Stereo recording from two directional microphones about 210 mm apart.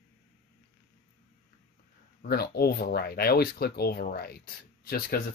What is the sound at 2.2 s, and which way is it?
Speech, 50° left (ahead or behind).